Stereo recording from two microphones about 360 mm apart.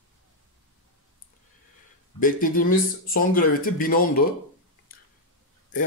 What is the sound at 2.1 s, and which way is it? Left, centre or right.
A man's voice, left.